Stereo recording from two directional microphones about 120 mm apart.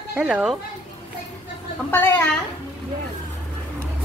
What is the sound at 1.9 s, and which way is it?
Speech, 20° left (ahead or behind).